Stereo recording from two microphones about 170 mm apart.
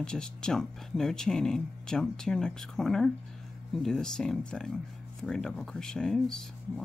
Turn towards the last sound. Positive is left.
turn(degrees=5)  # may be behind; listen again after turning